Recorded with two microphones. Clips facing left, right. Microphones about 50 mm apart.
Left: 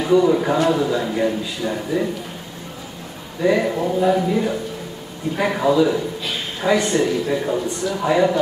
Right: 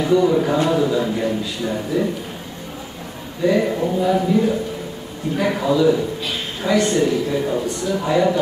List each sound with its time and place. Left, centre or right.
0.2 s a man's voice: centre
3.4 s a man's voice: centre
6.9 s a man's voice: left
7.4 s a man's voice: centre
8.0 s speech: centre